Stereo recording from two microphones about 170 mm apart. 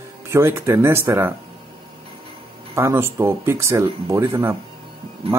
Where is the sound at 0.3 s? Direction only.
15° right (ahead or behind).